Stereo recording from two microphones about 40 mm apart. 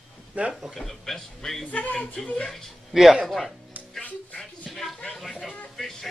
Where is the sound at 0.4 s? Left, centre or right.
Right.